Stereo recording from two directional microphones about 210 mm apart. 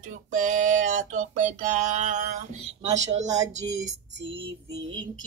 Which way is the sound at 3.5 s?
65° right (ahead or behind).